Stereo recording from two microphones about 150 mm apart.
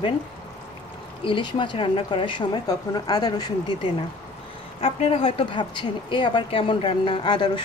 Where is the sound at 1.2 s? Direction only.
35° left (ahead or behind).